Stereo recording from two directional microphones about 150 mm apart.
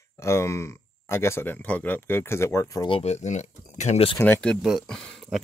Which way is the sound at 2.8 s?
40° left (ahead or behind).